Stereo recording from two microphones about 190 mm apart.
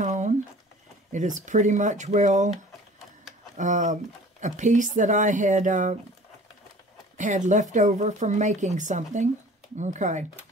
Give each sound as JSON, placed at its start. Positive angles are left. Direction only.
{"t": 0.0, "sound": "a sound", "side_deg": -40}
{"t": 1.1, "sound": "speech", "side_deg": -40}
{"t": 3.5, "sound": "speech", "side_deg": -40}
{"t": 7.2, "sound": "speech", "side_deg": -40}